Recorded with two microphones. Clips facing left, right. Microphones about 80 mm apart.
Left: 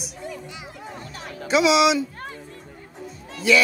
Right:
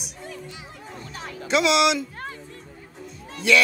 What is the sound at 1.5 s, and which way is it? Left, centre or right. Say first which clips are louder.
Speech: left 2 dB; centre.